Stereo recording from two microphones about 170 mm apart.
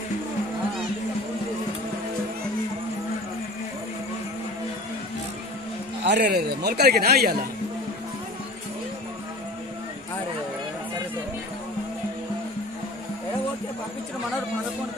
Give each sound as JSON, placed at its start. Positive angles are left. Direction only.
{"t": 6.0, "sound": "a man's voice", "side_deg": -75}